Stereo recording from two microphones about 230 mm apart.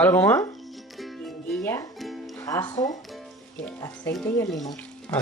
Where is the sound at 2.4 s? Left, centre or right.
Centre.